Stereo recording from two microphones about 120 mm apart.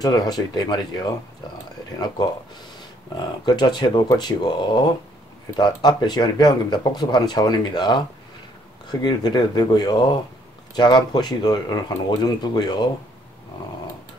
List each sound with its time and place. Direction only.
0.0 s speech: 35° left (ahead or behind)
3.2 s speech: 35° left (ahead or behind)